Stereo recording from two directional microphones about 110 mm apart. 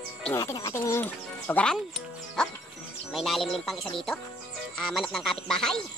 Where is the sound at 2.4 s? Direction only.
5° left (ahead or behind).